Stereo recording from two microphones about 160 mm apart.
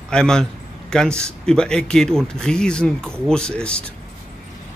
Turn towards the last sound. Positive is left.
turn(degrees=5)  # may be behind; listen again after turning